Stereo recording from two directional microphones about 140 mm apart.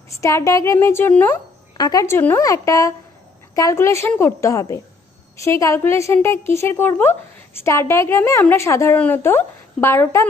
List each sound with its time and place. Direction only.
0.1 s a woman's voice: 20° left (ahead or behind)
1.8 s a woman's voice: 25° left (ahead or behind)